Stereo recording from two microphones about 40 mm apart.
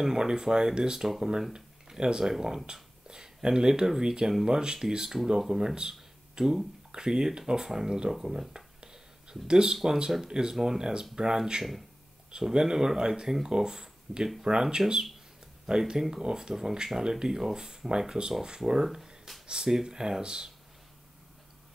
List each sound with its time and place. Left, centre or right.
0.0 s speech: centre
8.1 s a sound: centre
9.8 s speech: centre